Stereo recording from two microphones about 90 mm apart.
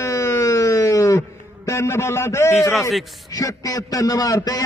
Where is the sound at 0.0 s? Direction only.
35° left (ahead or behind).